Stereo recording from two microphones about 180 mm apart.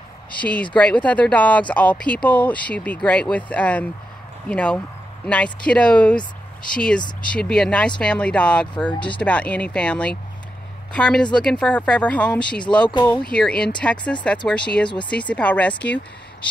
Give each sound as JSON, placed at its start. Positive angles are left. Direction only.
{"t": 0.3, "sound": "speech", "side_deg": 5}